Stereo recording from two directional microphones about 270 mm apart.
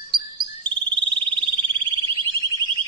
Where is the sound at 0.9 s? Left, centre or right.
Centre.